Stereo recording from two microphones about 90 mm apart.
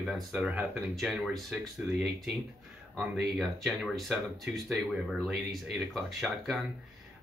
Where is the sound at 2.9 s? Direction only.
Centre (ahead or behind).